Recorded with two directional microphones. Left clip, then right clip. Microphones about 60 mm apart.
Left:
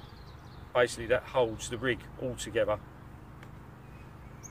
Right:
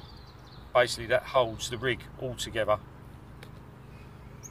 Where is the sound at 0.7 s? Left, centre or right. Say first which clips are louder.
Right 3 dB; left.